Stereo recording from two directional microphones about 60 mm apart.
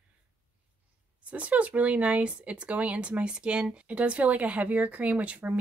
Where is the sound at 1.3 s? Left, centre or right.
Right.